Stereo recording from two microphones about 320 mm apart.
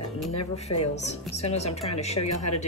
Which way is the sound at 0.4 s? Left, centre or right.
Centre.